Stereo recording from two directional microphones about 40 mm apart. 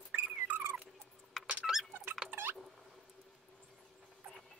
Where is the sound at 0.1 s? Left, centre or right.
Right.